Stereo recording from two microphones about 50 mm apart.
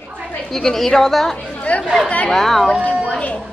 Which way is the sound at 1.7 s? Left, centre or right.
Left.